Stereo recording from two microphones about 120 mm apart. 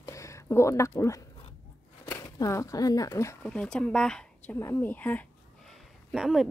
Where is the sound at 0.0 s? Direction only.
25° left (ahead or behind).